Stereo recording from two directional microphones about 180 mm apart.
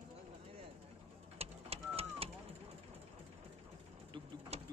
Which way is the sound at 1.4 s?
35° right (ahead or behind).